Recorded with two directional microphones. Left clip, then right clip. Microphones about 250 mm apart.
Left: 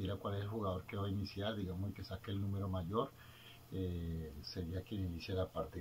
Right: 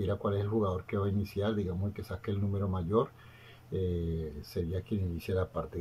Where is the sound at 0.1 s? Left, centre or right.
Right.